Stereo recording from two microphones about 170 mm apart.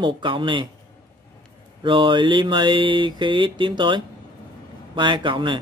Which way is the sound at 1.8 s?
30° right (ahead or behind).